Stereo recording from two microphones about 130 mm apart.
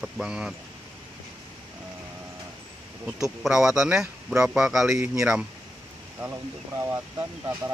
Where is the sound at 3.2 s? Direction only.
5° right (ahead or behind).